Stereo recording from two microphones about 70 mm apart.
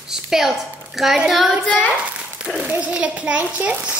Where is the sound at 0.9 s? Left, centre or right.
Centre.